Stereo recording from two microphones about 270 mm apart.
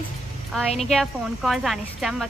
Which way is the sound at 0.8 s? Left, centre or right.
Centre.